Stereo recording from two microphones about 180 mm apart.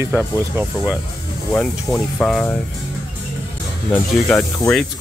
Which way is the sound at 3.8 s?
5° left (ahead or behind).